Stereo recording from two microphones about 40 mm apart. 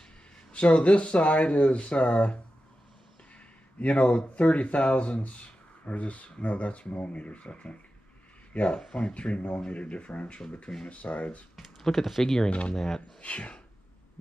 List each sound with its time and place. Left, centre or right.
0.5 s speech: left
3.8 s speech: left
8.7 s speech: left
11.8 s speech: centre
12.4 s speech: left
12.7 s speech: centre
13.2 s speech: left